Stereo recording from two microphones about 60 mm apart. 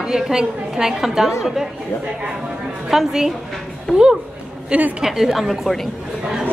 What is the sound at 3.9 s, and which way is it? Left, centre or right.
Speech, centre.